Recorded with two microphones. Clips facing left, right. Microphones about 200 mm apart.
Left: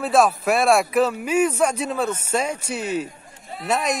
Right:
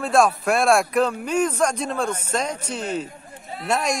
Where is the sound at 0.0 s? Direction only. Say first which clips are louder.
Left 1 dB; centre (ahead or behind).